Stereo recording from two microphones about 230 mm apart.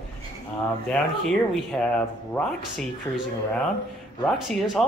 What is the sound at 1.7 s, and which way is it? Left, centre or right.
Speech, centre.